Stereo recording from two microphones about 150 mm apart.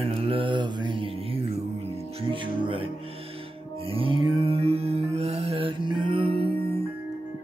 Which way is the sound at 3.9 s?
35° right (ahead or behind).